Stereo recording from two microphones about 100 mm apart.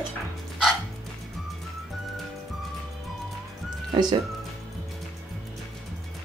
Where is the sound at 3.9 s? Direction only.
45° right (ahead or behind).